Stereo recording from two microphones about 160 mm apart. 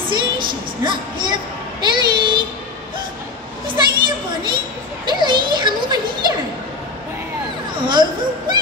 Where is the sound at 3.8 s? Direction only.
30° right (ahead or behind).